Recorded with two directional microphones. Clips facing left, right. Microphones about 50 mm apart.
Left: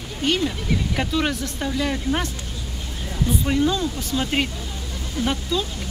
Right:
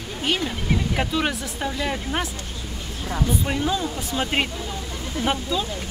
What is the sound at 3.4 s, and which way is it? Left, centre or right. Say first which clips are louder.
Speech: left 3 dB; centre.